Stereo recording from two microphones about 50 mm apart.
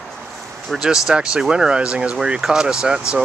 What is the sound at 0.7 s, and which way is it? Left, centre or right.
Speech, centre.